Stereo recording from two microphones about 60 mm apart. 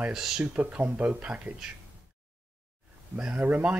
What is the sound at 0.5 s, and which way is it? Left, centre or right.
Speech, right.